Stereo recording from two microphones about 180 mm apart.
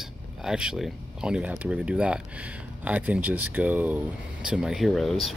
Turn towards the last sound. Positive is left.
turn(degrees=0)  # may be behind; listen again after turning